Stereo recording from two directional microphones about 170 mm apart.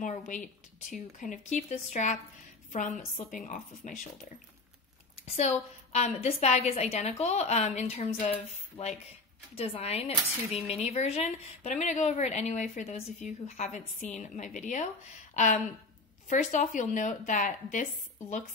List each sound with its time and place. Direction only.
0.0 s speech: 45° left (ahead or behind)
5.2 s a woman's voice: 40° left (ahead or behind)